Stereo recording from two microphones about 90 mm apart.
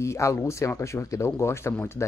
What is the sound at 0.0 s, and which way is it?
Speech, 35° left (ahead or behind).